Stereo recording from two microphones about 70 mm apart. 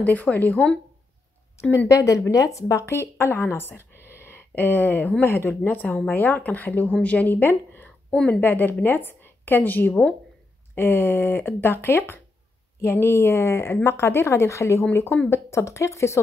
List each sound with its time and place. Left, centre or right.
0.0 s speech: left
1.9 s a woman's voice: left